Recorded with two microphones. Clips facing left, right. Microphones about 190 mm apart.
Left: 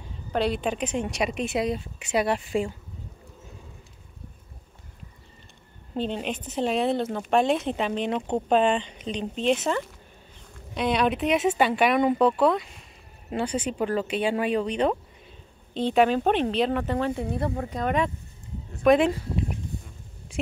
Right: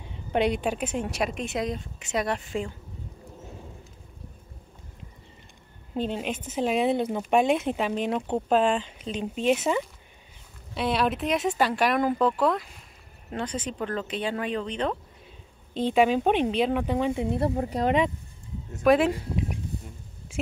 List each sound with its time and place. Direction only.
0.3 s a woman's voice: 15° right (ahead or behind); by 2.7 s 10° left (ahead or behind)
5.9 s a woman's voice: 5° right (ahead or behind); by 15.0 s 10° left (ahead or behind)
15.7 s speech: 10° right (ahead or behind)
17.3 s speech: 25° right (ahead or behind)
18.8 s speech: 5° right (ahead or behind)